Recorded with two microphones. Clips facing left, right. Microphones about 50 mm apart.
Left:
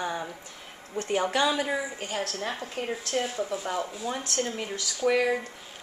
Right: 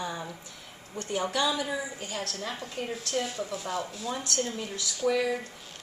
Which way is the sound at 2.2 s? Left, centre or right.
Left.